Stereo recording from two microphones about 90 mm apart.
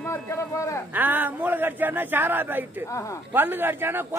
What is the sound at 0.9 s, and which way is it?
A man's voice, 20° right (ahead or behind).